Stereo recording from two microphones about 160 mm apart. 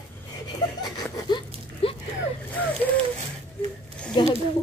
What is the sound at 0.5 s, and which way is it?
Laughter, 25° left (ahead or behind).